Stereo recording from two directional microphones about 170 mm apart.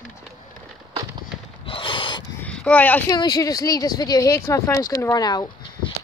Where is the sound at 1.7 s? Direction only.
30° left (ahead or behind).